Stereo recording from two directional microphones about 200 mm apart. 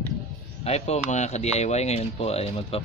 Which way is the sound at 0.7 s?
30° left (ahead or behind).